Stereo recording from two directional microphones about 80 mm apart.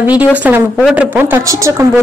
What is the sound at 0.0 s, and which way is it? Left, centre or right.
Speech, centre.